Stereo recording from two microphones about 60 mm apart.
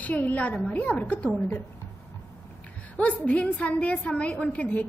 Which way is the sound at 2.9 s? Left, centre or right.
Left.